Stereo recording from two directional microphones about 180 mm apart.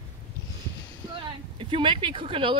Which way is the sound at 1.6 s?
30° right (ahead or behind).